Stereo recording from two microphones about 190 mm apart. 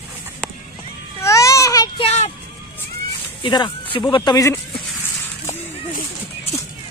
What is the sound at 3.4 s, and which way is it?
Speech, 25° left (ahead or behind).